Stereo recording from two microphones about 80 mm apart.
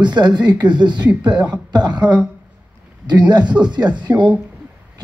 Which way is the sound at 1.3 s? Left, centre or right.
Centre.